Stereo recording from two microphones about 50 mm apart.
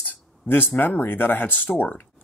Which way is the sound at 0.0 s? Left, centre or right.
Left.